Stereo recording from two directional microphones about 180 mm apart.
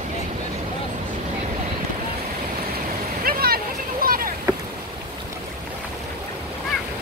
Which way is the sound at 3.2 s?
55° right (ahead or behind).